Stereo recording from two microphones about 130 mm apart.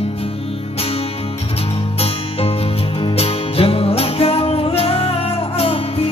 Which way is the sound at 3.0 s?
50° left (ahead or behind).